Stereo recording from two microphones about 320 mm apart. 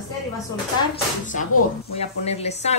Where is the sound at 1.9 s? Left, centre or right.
Centre.